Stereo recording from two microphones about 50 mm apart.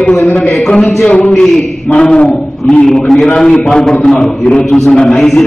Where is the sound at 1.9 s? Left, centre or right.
Centre.